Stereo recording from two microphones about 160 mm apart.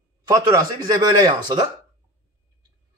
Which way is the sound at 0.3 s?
20° right (ahead or behind).